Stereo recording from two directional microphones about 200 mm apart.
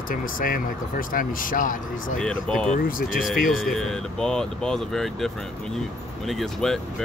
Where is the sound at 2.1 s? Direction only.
5° left (ahead or behind).